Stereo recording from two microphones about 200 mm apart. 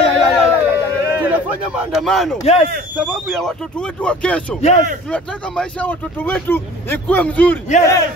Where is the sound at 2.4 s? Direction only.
35° left (ahead or behind).